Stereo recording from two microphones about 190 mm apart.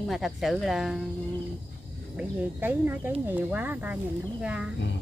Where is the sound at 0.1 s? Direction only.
Centre (ahead or behind).